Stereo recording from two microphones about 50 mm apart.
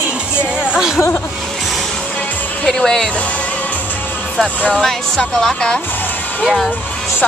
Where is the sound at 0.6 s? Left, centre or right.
Centre.